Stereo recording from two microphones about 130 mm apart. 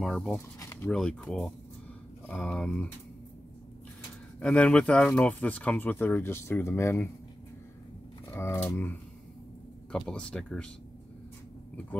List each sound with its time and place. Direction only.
0.0 s speech: 5° left (ahead or behind)
0.6 s speech: 25° left (ahead or behind)
0.8 s speech: 5° left (ahead or behind)
4.4 s speech: 10° left (ahead or behind)
8.3 s speech: 25° left (ahead or behind)
9.9 s speech: 5° left (ahead or behind)